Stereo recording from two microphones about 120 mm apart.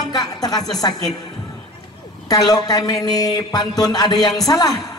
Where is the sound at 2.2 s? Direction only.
30° left (ahead or behind).